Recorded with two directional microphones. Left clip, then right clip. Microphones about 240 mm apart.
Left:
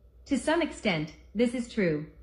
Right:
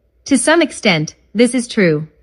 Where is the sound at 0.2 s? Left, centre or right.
Right.